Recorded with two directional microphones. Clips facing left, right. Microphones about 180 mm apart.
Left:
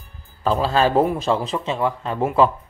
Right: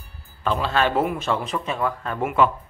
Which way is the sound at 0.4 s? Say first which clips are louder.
Left 4 dB; 35° left (ahead or behind).